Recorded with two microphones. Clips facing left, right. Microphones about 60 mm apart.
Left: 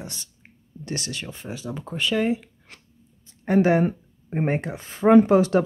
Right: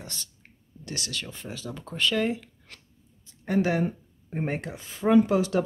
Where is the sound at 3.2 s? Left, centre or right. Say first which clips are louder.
Left 6 dB; left.